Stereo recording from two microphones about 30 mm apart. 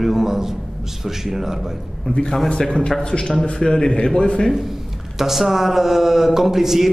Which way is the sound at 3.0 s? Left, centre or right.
Left.